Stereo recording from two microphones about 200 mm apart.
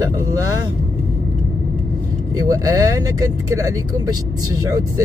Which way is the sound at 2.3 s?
20° right (ahead or behind).